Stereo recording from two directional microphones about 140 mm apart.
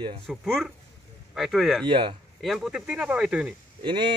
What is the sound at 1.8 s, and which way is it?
Speech, 35° right (ahead or behind).